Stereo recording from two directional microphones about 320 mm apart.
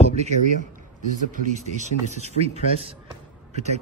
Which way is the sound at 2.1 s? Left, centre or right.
Centre.